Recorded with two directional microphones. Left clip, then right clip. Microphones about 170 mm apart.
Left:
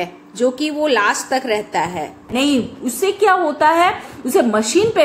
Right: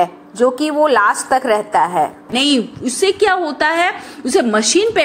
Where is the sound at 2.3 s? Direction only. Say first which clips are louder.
Right 1 dB; 30° right (ahead or behind).